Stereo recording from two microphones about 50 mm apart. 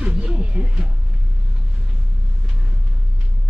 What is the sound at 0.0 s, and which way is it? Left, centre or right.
Music, right.